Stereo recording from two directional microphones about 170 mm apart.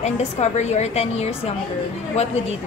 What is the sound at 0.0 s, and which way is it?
A woman's voice, 40° left (ahead or behind).